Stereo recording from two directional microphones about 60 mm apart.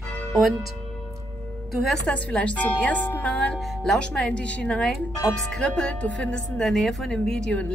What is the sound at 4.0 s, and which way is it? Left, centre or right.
Speech, centre.